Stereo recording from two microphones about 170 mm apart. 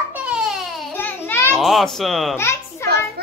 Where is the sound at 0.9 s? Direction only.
10° left (ahead or behind).